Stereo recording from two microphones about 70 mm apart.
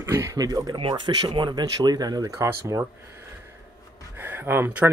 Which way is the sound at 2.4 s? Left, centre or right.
Right.